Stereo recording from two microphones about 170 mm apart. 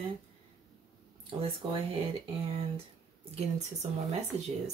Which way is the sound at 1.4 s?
35° right (ahead or behind).